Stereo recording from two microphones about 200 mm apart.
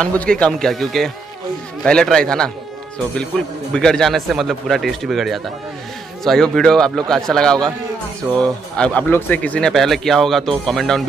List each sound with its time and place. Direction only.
0.0 s speech: 5° left (ahead or behind)
3.7 s speech: 5° left (ahead or behind)